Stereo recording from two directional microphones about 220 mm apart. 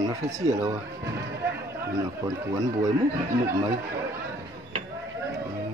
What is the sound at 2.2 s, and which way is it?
Speech, 15° right (ahead or behind).